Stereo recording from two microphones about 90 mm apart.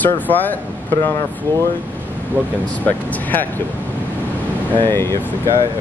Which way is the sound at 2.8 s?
20° left (ahead or behind).